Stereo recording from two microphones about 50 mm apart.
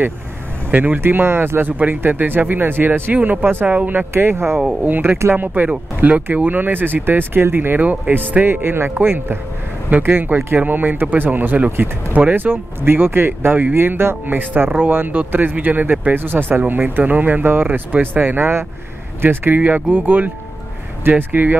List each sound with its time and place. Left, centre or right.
0.7 s speech: right
1.7 s speech: right
4.1 s speech: right
5.3 s speech: right
9.8 s speech: right
12.4 s speech: right
16.2 s speech: right
21.0 s speech: right